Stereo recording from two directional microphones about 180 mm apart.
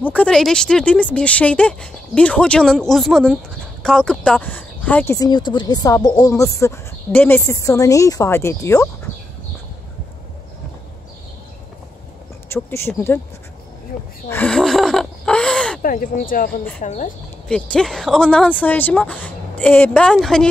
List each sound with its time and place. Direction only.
0.0 s speech: 5° left (ahead or behind)
12.6 s speech: 15° left (ahead or behind)
14.3 s gasp: 5° left (ahead or behind)
15.8 s speech: 50° left (ahead or behind)
17.5 s speech: 5° left (ahead or behind)